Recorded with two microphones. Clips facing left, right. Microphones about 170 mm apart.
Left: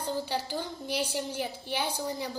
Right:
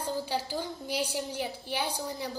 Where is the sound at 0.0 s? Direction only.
5° right (ahead or behind).